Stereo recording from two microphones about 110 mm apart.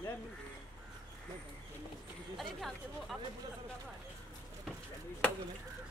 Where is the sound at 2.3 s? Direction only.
Centre (ahead or behind).